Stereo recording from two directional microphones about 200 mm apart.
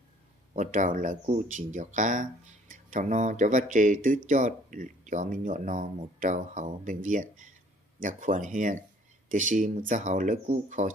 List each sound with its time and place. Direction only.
0.6 s speech: 40° right (ahead or behind)